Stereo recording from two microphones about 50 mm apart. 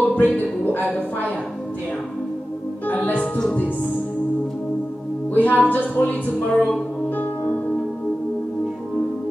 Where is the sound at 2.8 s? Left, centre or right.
Left.